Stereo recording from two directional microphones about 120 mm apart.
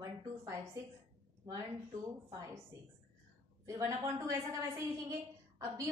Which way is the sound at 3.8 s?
25° right (ahead or behind).